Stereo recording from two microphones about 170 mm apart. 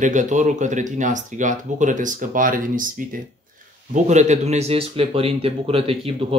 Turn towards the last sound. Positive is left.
turn(degrees=-35)  # may be behind; listen again after turning